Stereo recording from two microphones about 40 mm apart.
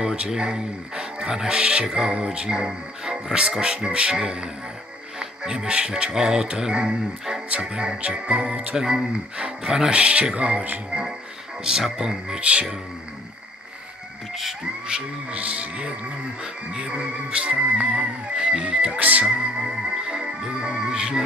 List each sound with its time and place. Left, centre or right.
0.3 s speech: centre
5.2 s music: centre
5.7 s speech: right
8.7 s speech: centre
9.9 s speech: right
11.8 s speech: centre
12.4 s speech: right
14.9 s speech: right
15.3 s speech: right
16.7 s speech: right
18.9 s speech: right
19.3 s speech: centre